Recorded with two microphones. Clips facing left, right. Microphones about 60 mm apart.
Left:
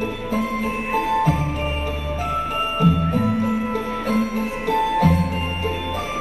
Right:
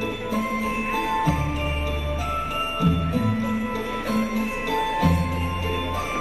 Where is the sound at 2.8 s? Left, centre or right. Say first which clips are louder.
Left 4 dB; left.